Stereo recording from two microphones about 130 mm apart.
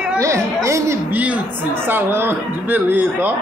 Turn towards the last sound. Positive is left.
turn(degrees=-15)  # may be behind; listen again after turning